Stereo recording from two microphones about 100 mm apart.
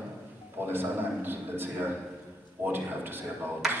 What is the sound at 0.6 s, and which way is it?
A man's voice, 20° right (ahead or behind).